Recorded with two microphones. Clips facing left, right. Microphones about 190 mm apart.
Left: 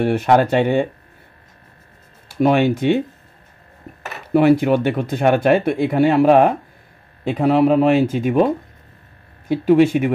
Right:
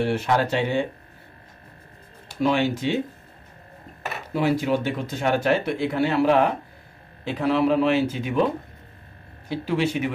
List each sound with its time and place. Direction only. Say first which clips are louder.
0.0 s speech: left 7 dB; 55° left (ahead or behind)
2.4 s speech: left 7 dB; 55° left (ahead or behind)
4.3 s speech: left 9 dB; 60° left (ahead or behind)
9.5 s speech: left 11 dB; 50° left (ahead or behind)